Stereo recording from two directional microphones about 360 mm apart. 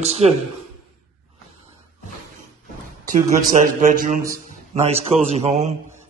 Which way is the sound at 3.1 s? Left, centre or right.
Right.